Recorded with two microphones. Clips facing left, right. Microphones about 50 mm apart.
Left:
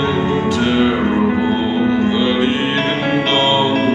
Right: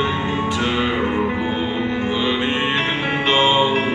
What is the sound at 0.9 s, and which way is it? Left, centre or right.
Music, left.